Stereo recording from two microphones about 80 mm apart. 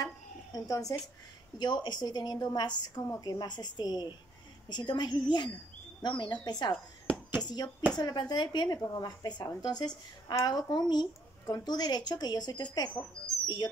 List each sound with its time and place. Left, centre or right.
0.0 s a sound: left
1.6 s speech: left
6.0 s speech: left
6.4 s speech: left
7.1 s a sound: right
7.4 s speech: left